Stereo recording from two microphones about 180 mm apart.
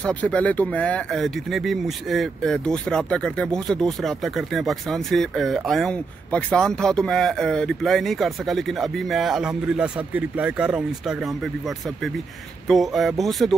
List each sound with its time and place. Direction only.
0.0 s speech: 5° left (ahead or behind)
12.6 s speech: centre (ahead or behind)